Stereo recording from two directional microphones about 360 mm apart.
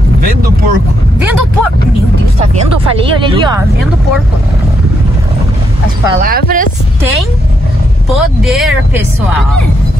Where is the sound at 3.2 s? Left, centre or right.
Centre.